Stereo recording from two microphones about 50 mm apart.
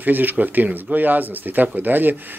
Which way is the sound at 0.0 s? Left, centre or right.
Right.